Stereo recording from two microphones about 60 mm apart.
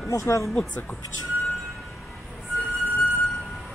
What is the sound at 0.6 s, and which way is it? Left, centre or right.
Speech, left.